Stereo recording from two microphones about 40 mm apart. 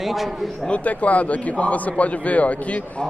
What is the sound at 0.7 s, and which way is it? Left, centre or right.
A man's voice, left.